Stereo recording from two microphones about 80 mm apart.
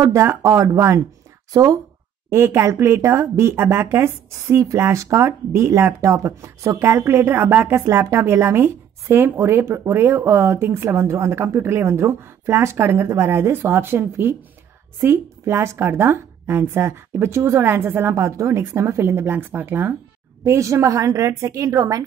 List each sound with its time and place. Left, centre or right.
0.0 s a woman's voice: right
2.2 s a woman's voice: right